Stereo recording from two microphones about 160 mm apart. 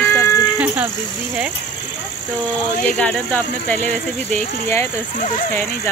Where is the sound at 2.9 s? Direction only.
10° left (ahead or behind).